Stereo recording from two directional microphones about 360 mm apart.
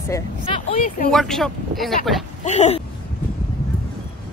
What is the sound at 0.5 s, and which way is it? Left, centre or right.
Speech, left.